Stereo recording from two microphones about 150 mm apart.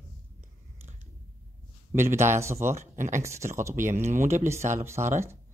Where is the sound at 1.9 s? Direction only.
15° right (ahead or behind).